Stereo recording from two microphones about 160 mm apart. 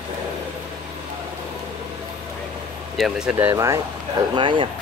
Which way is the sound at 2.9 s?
5° right (ahead or behind).